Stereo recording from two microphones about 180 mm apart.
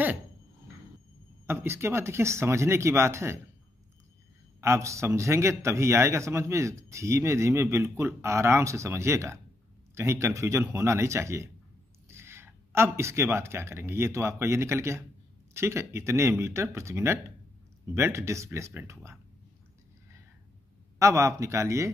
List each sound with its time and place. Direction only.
1.4 s a man's voice: 15° right (ahead or behind)
4.6 s a man's voice: 15° right (ahead or behind)
21.0 s a man's voice: 15° right (ahead or behind)